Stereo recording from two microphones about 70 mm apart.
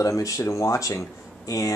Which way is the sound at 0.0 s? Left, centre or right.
Left.